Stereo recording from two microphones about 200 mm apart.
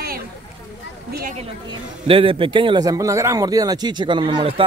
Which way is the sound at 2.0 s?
25° right (ahead or behind).